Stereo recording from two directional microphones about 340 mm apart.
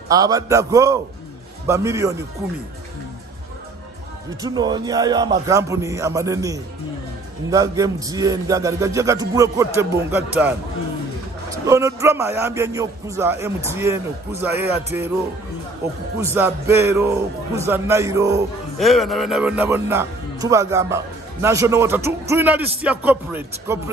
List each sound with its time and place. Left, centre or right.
0.1 s speech: centre
4.4 s speech: centre
11.6 s speech: centre
16.2 s speech: centre